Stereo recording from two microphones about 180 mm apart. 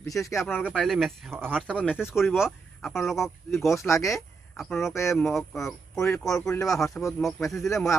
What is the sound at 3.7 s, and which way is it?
Speech, 15° left (ahead or behind).